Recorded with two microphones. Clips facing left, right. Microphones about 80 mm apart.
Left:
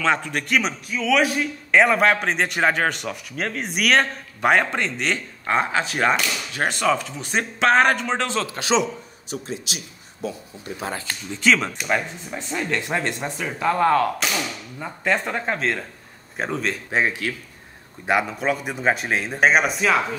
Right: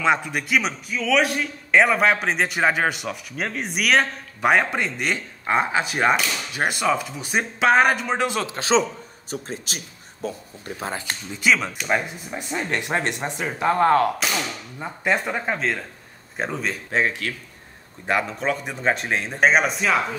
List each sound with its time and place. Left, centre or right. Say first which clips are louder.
0.0 s a man's voice: right 1 dB; centre
8.5 s a man's voice: right 1 dB; right
10.8 s speech: even; right
11.3 s speech: left 1 dB; centre
12.5 s speech: even; right
14.8 s a man's voice: even; centre
16.9 s a man's voice: even; centre